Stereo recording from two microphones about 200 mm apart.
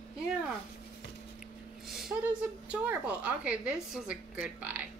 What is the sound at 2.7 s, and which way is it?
A woman's voice, 5° right (ahead or behind).